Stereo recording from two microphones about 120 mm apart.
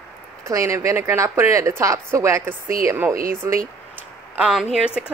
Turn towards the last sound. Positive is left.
turn(degrees=-10)  # may be behind; listen again after turning